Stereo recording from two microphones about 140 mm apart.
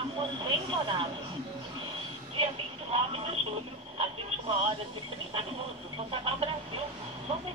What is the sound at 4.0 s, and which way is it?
Speech, 40° right (ahead or behind).